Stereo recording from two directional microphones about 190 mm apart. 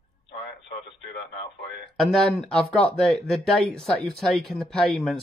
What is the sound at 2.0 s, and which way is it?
Speech, centre (ahead or behind).